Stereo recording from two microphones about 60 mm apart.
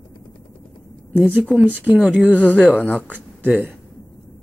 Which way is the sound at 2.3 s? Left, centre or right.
Left.